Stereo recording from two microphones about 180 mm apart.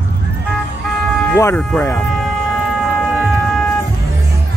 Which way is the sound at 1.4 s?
10° left (ahead or behind).